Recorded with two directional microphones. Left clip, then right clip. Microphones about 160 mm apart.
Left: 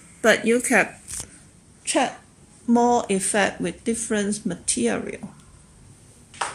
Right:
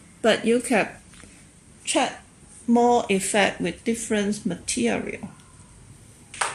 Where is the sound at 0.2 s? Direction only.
5° left (ahead or behind).